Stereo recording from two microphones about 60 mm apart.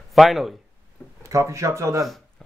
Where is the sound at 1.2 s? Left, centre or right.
Right.